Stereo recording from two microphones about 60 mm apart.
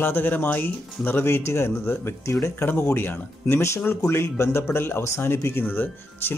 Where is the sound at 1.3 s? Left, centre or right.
Left.